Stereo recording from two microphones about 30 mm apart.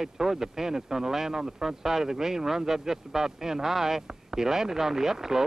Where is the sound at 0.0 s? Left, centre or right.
Centre.